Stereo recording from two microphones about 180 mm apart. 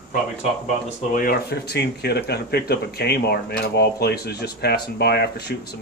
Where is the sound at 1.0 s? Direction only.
50° left (ahead or behind); by 5.7 s 65° left (ahead or behind).